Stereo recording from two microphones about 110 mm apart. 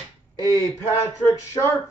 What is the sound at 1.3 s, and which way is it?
Speech, 25° left (ahead or behind).